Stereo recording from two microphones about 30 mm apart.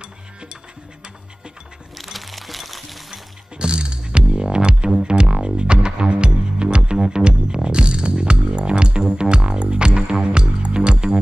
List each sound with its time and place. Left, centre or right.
0.0 s music: right
2.0 s music: centre
3.5 s music: right